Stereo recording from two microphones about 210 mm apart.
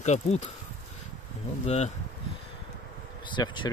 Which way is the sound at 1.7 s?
30° left (ahead or behind).